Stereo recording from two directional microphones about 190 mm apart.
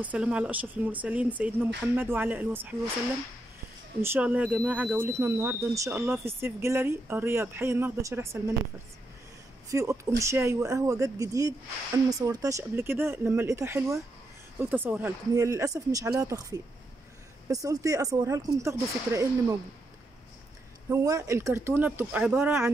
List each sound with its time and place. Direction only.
0.0 s speech: 5° right (ahead or behind)
4.0 s speech: 10° right (ahead or behind)
9.7 s speech: 15° right (ahead or behind)
20.9 s speech: 15° right (ahead or behind)